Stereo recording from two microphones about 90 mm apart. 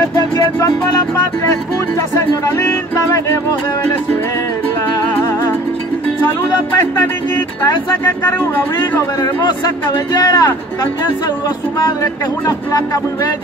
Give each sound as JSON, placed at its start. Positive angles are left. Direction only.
{"t": 0.1, "sound": "music", "side_deg": 45}
{"t": 9.2, "sound": "speech", "side_deg": 50}